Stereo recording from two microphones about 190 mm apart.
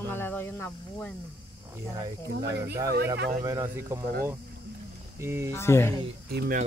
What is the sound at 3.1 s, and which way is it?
Speech, 55° right (ahead or behind).